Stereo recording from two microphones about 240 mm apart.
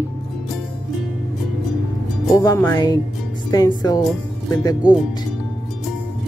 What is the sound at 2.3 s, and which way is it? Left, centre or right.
Speech, centre.